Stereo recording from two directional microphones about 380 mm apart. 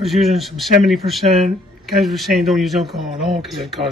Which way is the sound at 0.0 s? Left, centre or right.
Centre.